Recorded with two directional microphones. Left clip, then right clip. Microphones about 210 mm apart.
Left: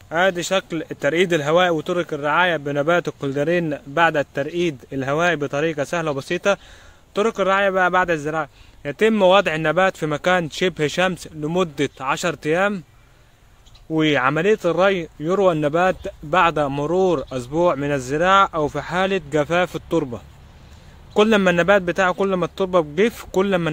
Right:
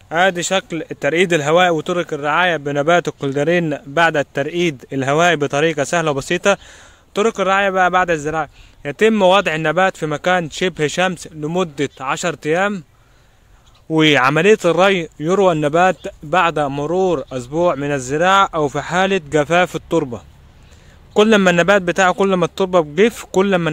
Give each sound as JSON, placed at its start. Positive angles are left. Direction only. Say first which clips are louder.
{"t": 0.1, "sound": "speech", "louder": "right 3 dB", "side_deg": -35}
{"t": 13.9, "sound": "speech", "louder": "right 5 dB", "side_deg": -35}